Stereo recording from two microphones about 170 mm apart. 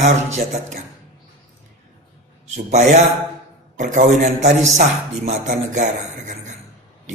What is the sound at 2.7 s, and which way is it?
A man's voice, 40° right (ahead or behind).